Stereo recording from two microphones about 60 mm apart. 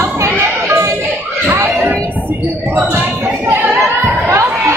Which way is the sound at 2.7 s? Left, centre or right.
Right.